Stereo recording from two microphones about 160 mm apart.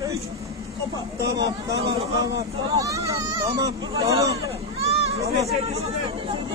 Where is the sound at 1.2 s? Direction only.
90° right.